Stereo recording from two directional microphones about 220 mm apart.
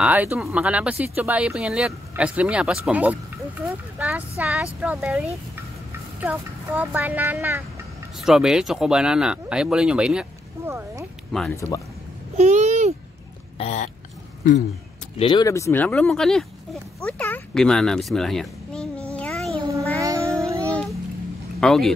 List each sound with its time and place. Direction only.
0.0 s a woman's voice: 5° right (ahead or behind)
6.2 s a woman's voice: 10° right (ahead or behind)
11.3 s speech: 10° left (ahead or behind)
12.4 s babbling: 30° right (ahead or behind)
13.6 s speech: 30° left (ahead or behind)
15.1 s speech: 20° left (ahead or behind); by 16.4 s centre (ahead or behind)
17.2 s a sound: 5° left (ahead or behind)
20.0 s child singing: 15° right (ahead or behind)
20.6 s a sound: 5° left (ahead or behind)
21.5 s speech: centre (ahead or behind)